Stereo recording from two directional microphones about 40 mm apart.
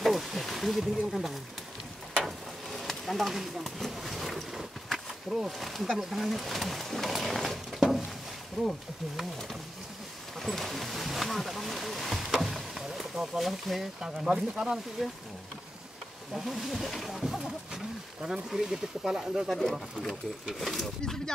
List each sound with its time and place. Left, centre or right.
0.0 s snake: centre
2.2 s a sound: centre
5.7 s speech: centre
8.6 s speech: centre
10.4 s a sound: centre
13.1 s a sound: centre
13.4 s speech: centre
14.1 s speech: centre
15.0 s speech: centre
16.3 s speech: centre
19.7 s speech: centre